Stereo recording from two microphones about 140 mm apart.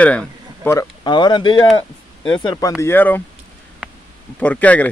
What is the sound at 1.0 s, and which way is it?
Speech, 35° left (ahead or behind).